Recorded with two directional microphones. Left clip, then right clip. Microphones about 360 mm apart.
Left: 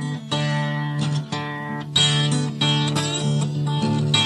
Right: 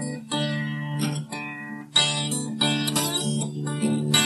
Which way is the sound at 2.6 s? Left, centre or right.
Left.